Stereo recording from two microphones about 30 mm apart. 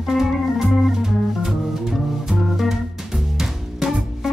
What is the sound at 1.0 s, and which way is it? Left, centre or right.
Music, centre.